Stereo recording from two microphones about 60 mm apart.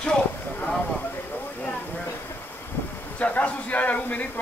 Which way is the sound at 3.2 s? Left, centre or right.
Left.